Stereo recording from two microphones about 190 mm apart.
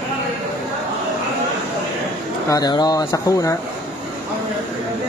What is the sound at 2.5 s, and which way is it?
Speech, 20° left (ahead or behind).